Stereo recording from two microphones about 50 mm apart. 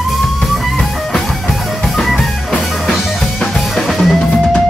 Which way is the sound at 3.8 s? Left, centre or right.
Centre.